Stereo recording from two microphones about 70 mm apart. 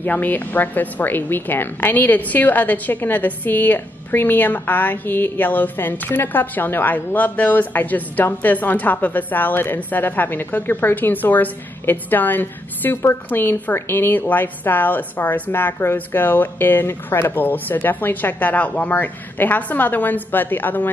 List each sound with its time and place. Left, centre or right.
0.0 s a woman's voice: left